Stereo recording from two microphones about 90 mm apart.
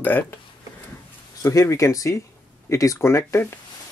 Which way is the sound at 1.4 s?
35° left (ahead or behind).